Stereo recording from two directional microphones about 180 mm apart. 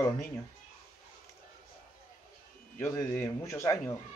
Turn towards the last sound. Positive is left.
turn(degrees=15)  # may be behind; listen again after turning